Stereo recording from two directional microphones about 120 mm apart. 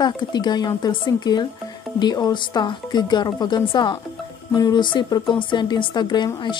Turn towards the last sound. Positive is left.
turn(degrees=40)  # may be behind; listen again after turning